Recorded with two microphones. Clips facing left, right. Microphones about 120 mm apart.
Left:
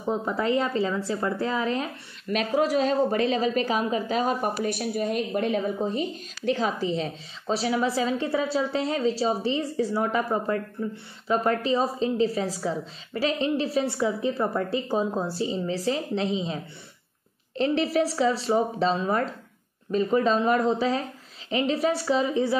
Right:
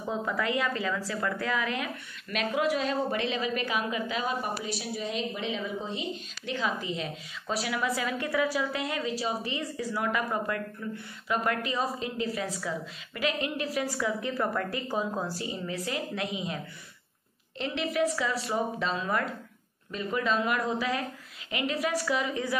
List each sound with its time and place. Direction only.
0.0 s speech: 25° left (ahead or behind)
17.6 s speech: 35° left (ahead or behind)